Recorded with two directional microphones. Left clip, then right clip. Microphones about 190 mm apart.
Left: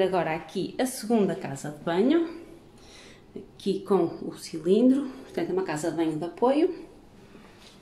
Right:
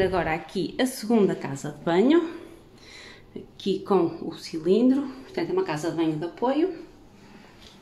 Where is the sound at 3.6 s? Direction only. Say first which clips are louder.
Right 2 dB; 10° right (ahead or behind); by 6.3 s 5° left (ahead or behind).